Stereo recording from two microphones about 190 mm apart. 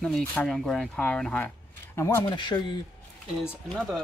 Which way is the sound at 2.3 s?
25° left (ahead or behind).